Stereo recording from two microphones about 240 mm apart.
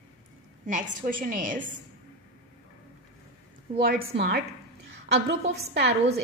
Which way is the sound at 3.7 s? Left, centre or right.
Right.